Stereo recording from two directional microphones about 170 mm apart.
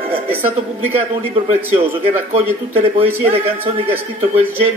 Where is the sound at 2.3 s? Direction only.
35° right (ahead or behind).